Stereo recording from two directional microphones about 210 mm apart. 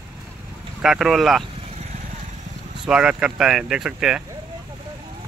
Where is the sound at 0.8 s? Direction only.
5° right (ahead or behind).